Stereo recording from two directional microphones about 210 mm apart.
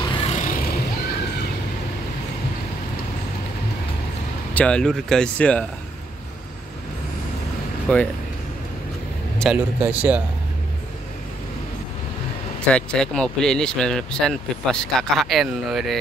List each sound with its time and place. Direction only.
0.1 s vehicle: 30° left (ahead or behind)
4.6 s speech: 5° left (ahead or behind)
7.9 s speech: 5° left (ahead or behind)
9.4 s speech: 5° right (ahead or behind)
12.6 s speech: 5° left (ahead or behind)